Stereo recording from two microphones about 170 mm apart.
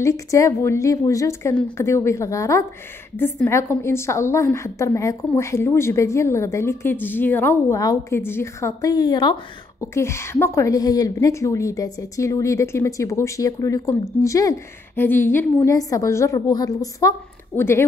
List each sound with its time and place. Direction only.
0.0 s a woman's voice: 20° left (ahead or behind)